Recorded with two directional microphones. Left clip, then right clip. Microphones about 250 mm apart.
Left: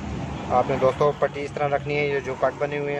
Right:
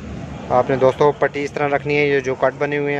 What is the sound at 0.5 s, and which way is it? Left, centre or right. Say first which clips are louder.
Speech: right 5 dB; right.